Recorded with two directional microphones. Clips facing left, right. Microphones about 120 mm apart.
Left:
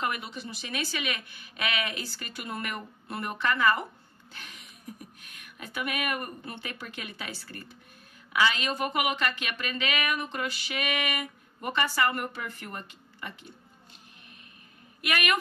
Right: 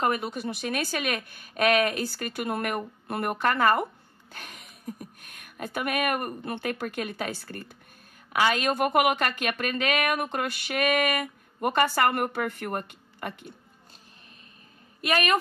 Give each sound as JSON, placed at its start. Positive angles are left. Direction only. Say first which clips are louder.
{"t": 0.0, "sound": "speech", "louder": "right 6 dB", "side_deg": -45}
{"t": 4.3, "sound": "a sound", "louder": "right 4 dB", "side_deg": -50}
{"t": 5.2, "sound": "speech", "louder": "right 8 dB", "side_deg": -55}
{"t": 15.0, "sound": "a woman's voice", "louder": "right 4 dB", "side_deg": -35}